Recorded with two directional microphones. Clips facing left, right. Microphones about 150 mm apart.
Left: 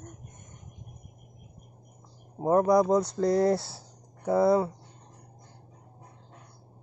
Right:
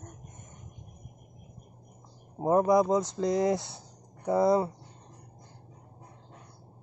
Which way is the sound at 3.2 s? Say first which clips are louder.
Left 3 dB; 15° right (ahead or behind).